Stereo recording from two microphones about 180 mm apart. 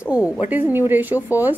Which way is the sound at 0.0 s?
5° right (ahead or behind).